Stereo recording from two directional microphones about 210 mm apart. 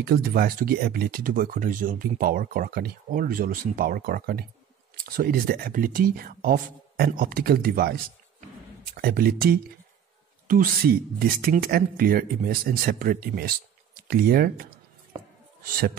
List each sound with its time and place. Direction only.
0.0 s speech: 45° right (ahead or behind)
15.7 s speech: 45° right (ahead or behind)